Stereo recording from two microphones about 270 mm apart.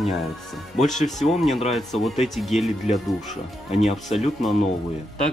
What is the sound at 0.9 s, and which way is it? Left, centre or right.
Speech, left.